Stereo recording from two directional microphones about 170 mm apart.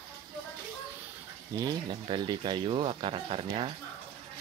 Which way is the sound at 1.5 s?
25° right (ahead or behind).